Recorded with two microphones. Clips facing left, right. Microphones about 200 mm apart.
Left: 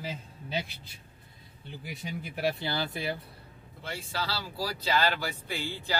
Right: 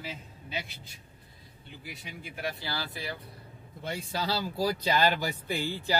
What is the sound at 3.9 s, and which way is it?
Speech, 20° right (ahead or behind).